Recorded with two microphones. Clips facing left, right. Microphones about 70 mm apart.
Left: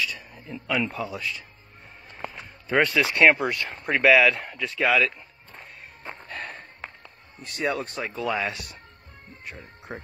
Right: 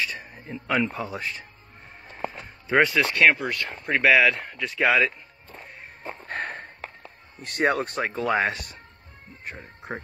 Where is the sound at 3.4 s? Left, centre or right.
Centre.